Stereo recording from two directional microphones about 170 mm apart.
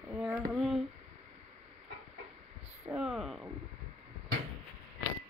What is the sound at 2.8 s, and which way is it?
Speech, 5° right (ahead or behind).